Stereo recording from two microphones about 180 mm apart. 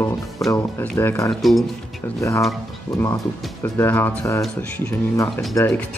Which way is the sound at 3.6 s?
15° left (ahead or behind).